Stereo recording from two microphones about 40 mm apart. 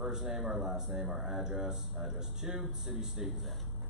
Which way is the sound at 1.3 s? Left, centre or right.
Centre.